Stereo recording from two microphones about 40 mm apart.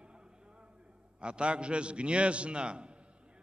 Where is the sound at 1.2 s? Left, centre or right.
Right.